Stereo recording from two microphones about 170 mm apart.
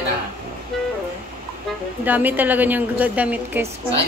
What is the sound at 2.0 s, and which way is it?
A woman's voice, 10° right (ahead or behind).